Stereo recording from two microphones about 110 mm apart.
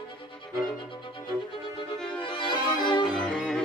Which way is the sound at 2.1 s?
50° left (ahead or behind).